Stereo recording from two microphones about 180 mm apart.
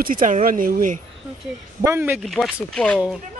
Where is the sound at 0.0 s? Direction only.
50° right (ahead or behind).